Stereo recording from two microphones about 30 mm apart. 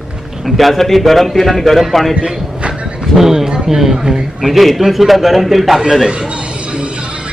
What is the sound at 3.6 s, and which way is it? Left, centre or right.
Speech, centre.